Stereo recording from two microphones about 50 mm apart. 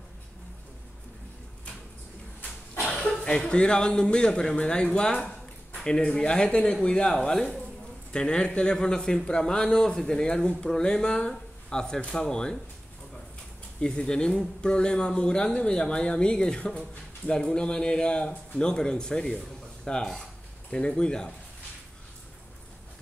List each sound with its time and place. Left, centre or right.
2.9 s speech: centre
13.7 s speech: centre